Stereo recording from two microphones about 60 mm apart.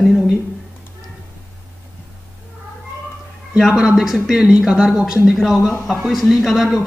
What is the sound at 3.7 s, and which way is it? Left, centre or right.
Speech, centre.